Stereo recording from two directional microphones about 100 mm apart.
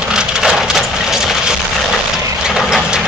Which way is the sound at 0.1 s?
5° right (ahead or behind).